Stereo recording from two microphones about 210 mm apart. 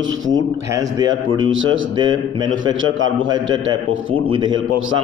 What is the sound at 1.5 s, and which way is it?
Speech, 65° right (ahead or behind).